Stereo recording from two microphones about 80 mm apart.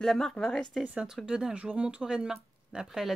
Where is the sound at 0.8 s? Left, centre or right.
Centre.